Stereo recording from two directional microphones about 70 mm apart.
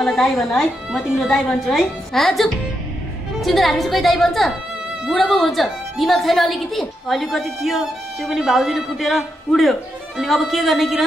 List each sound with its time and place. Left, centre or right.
0.0 s a woman's voice: centre